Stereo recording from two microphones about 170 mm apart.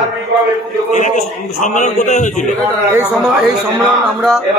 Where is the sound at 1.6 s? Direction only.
45° left (ahead or behind).